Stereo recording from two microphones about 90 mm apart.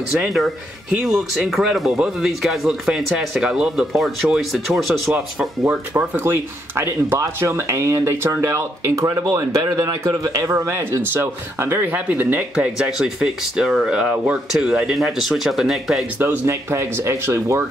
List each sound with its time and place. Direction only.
1.0 s speech: 5° right (ahead or behind)
5.9 s a man's voice: 25° right (ahead or behind); by 16.1 s 5° right (ahead or behind)
16.2 s speech: 25° right (ahead or behind)